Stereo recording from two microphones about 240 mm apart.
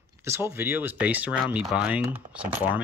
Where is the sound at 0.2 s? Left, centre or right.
Centre.